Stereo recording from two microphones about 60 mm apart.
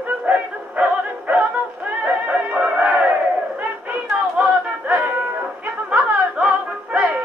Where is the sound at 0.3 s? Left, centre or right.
Right.